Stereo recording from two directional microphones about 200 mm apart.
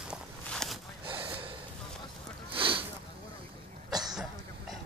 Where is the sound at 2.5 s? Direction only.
25° right (ahead or behind).